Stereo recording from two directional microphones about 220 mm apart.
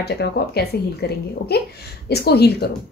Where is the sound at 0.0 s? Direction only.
50° left (ahead or behind).